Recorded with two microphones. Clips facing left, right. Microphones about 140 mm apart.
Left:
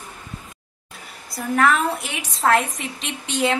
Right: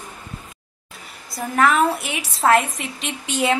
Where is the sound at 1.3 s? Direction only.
Centre (ahead or behind).